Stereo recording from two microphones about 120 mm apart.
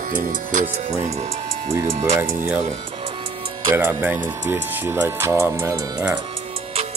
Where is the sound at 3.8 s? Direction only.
15° right (ahead or behind).